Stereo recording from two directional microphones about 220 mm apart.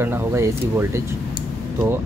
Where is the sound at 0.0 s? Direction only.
10° right (ahead or behind).